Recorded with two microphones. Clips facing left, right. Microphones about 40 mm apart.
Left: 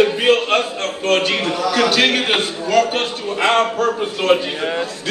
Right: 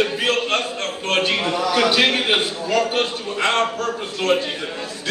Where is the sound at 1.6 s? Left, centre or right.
Centre.